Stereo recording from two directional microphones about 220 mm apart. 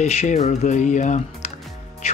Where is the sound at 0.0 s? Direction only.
30° left (ahead or behind).